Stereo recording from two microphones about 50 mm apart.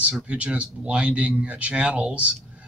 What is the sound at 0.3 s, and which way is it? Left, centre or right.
Speech, right.